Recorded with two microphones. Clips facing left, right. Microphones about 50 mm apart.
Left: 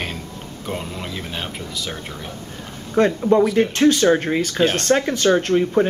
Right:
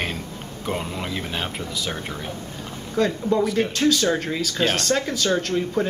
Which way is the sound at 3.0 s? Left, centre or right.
Left.